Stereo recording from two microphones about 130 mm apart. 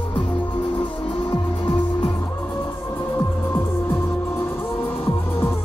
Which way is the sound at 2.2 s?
15° left (ahead or behind).